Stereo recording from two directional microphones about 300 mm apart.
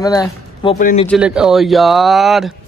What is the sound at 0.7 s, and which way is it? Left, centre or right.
Speech, left.